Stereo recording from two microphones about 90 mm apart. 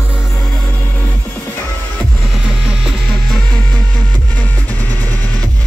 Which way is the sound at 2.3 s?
Centre (ahead or behind).